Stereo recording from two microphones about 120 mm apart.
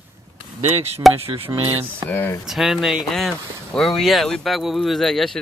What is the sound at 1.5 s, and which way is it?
Speech, 25° right (ahead or behind).